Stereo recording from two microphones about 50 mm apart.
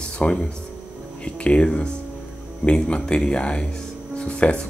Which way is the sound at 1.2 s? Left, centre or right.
Left.